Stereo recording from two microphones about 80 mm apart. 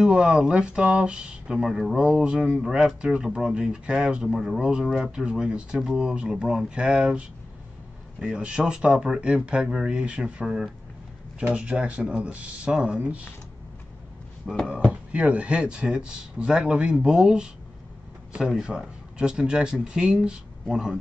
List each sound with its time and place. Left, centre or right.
0.0 s speech: centre
14.4 s speech: centre
14.9 s speech: centre